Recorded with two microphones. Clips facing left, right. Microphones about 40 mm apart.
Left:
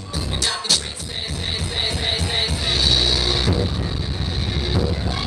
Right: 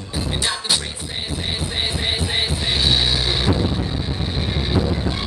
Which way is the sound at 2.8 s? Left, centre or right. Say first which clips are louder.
Even; centre.